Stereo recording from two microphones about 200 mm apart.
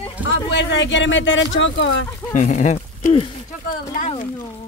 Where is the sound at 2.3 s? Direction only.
40° left (ahead or behind).